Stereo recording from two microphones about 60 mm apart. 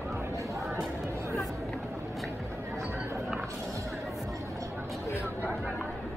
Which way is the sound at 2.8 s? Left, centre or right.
Right.